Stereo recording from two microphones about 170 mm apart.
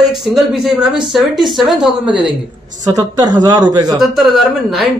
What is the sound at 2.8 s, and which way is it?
Speech, 25° right (ahead or behind).